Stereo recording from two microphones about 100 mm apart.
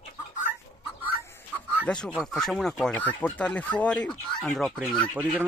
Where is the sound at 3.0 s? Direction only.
15° left (ahead or behind).